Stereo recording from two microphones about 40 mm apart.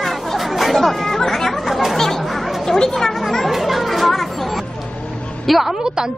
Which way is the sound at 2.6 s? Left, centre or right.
Centre.